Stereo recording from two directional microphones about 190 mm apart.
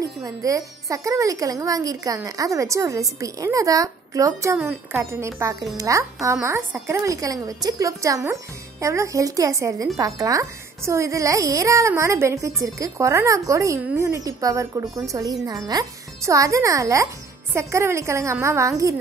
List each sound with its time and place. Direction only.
0.2 s a woman's voice: 15° right (ahead or behind)